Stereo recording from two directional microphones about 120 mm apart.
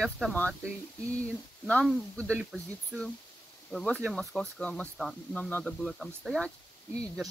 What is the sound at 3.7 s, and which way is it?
Speech, 5° left (ahead or behind).